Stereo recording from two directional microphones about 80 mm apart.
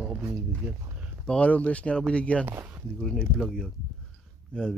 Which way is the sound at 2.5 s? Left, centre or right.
Right.